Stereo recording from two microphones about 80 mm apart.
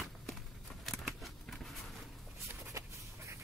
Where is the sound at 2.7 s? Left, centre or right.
Right.